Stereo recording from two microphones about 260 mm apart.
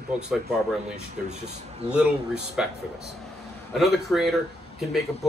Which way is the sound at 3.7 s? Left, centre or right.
Centre.